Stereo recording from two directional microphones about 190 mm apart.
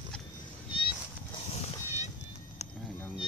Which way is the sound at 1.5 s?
35° left (ahead or behind).